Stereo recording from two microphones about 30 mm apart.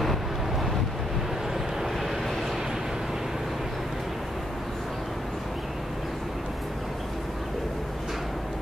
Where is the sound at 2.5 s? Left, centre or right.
Centre.